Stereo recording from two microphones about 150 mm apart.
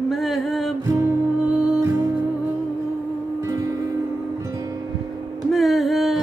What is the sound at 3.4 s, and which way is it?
Music, 20° right (ahead or behind).